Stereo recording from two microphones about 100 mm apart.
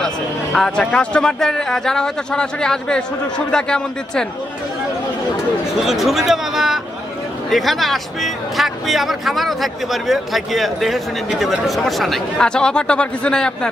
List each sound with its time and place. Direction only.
0.0 s speech: 5° left (ahead or behind)
5.8 s speech: centre (ahead or behind)